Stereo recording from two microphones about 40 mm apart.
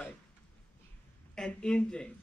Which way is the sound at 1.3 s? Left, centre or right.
Centre.